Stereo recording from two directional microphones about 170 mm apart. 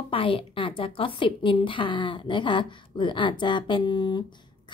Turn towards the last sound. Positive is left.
turn(degrees=25)  # may be behind; listen again after turning